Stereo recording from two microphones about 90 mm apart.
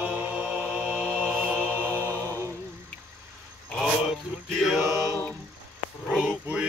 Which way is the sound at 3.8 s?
Centre (ahead or behind).